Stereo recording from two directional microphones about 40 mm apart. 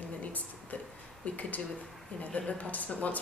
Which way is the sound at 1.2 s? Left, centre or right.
Left.